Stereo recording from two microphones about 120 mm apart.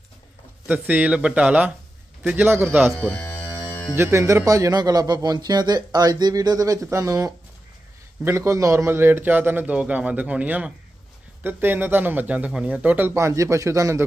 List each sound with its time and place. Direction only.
0.7 s a man's voice: 10° right (ahead or behind)
2.9 s speech: 5° left (ahead or behind)
3.2 s music: 15° left (ahead or behind)
3.9 s a man's voice: 20° right (ahead or behind)